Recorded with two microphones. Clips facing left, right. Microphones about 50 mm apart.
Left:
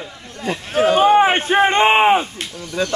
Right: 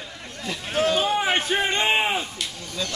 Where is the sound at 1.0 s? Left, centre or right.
Left.